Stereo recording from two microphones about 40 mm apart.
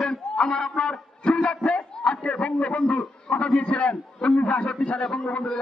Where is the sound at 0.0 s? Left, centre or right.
Centre.